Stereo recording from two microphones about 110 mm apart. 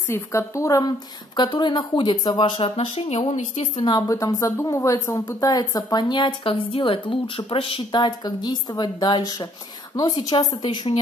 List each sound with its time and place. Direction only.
0.1 s a woman's voice: 25° left (ahead or behind)
1.3 s a woman's voice: 45° left (ahead or behind)
3.9 s speech: 35° left (ahead or behind); by 8.0 s 55° left (ahead or behind)
8.0 s speech: 40° left (ahead or behind)